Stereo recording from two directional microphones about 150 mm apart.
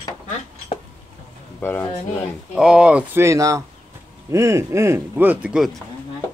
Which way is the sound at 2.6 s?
5° right (ahead or behind).